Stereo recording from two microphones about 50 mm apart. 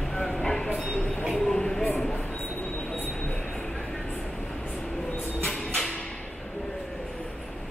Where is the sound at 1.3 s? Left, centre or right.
Centre.